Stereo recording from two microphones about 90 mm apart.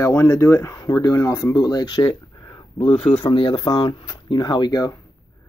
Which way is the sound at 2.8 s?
30° left (ahead or behind).